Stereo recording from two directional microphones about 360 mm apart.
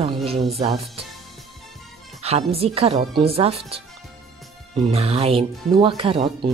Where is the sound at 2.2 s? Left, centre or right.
Centre.